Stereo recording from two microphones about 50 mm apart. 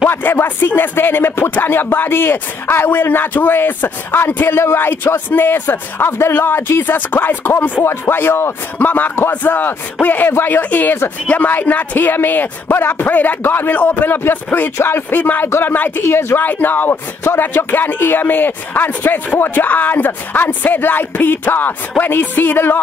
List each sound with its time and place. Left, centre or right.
0.1 s speech: left
4.6 s speech: left
8.7 s speech: left
10.6 s speech: left
12.7 s speech: left
13.0 s speech: left
14.8 s speech: left
16.0 s speech: left
16.4 s speech: left
17.3 s speech: left
17.6 s speech: left